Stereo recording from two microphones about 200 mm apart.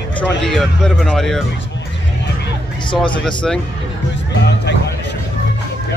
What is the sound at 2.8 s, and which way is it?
Speech, 25° left (ahead or behind).